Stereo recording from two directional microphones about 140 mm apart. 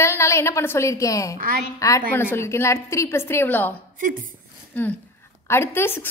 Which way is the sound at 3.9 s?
75° right (ahead or behind).